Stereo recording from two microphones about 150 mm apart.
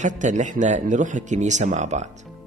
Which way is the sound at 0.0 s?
55° right (ahead or behind).